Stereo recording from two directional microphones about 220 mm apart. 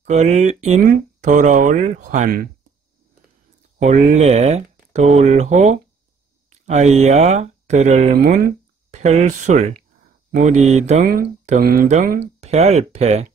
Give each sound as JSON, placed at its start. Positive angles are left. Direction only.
{"t": 0.0, "sound": "speech", "side_deg": -30}
{"t": 3.8, "sound": "speech", "side_deg": -35}
{"t": 11.1, "sound": "speech", "side_deg": -40}